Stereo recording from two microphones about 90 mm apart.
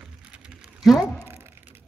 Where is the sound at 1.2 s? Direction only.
25° right (ahead or behind).